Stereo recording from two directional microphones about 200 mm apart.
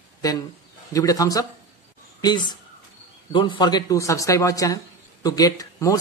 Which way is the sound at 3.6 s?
20° left (ahead or behind).